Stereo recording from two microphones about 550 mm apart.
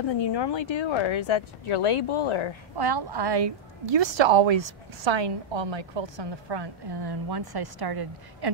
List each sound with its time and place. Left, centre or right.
0.1 s speech: left
2.8 s a woman's voice: right